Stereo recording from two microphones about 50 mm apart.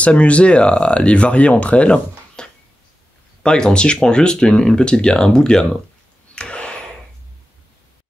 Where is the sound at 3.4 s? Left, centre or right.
Centre.